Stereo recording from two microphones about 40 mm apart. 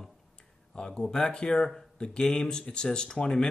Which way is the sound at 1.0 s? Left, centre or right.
Centre.